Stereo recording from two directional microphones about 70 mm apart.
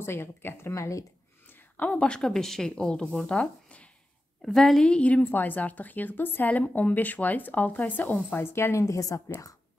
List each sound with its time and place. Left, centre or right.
0.0 s speech: left
0.7 s a woman's voice: left
1.5 s a woman's voice: left
4.4 s a woman's voice: centre; by 8.7 s left
8.7 s a woman's voice: left